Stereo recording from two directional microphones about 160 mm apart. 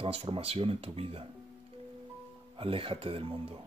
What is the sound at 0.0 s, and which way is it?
Speech, 35° right (ahead or behind).